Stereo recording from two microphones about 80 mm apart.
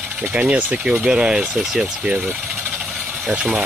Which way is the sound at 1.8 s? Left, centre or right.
Centre.